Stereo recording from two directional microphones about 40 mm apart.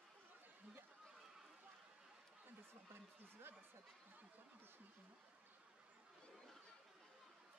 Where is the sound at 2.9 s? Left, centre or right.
Right.